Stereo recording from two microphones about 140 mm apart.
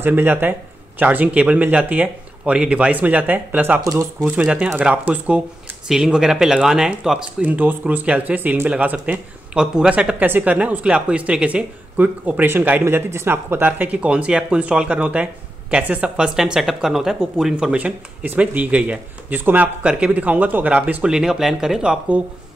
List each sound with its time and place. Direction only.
0.0 s speech: 15° right (ahead or behind)